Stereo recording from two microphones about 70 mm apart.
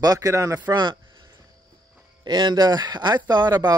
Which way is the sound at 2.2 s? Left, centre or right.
Right.